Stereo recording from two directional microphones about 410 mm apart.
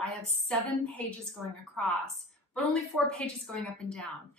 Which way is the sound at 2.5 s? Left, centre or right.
Centre.